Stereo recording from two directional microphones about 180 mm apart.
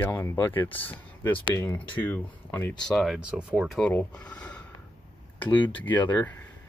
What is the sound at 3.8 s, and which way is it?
Speech, 10° left (ahead or behind).